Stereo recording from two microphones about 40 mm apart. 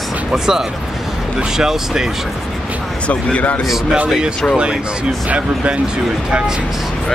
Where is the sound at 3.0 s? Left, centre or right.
Left.